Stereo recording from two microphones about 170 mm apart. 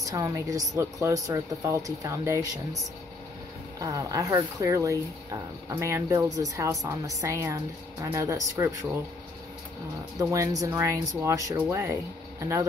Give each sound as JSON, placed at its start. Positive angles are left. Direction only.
{"t": 0.0, "sound": "speech", "side_deg": -20}
{"t": 3.8, "sound": "speech", "side_deg": -20}
{"t": 10.1, "sound": "speech", "side_deg": -20}